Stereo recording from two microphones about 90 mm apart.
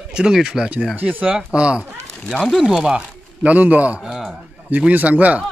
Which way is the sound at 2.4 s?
Centre (ahead or behind).